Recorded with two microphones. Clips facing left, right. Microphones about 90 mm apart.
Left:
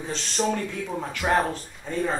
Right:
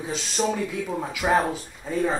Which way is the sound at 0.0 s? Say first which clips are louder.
Right 1 dB; 5° right (ahead or behind).